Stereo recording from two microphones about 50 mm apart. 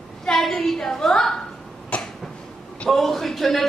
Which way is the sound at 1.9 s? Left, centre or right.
Left.